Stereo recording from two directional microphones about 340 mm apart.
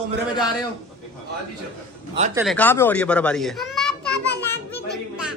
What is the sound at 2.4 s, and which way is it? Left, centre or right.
A child's voice, centre.